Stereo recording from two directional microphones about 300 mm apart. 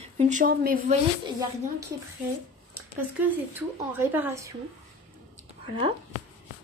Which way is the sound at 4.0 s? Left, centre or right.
Centre.